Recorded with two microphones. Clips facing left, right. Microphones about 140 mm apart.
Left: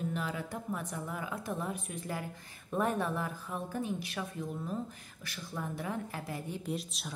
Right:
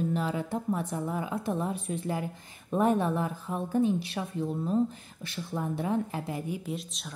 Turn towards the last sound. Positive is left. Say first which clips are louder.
# right 1 dB
turn(degrees=0)  # may be behind; listen again after turning